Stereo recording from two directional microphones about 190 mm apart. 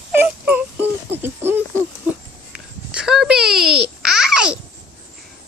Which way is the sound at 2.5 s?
5° right (ahead or behind).